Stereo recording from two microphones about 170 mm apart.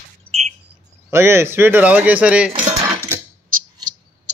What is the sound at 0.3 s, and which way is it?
Bird, 40° right (ahead or behind).